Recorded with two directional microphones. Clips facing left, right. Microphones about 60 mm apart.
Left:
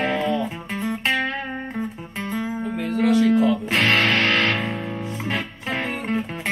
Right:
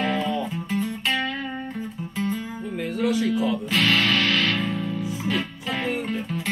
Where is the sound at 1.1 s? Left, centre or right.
Left.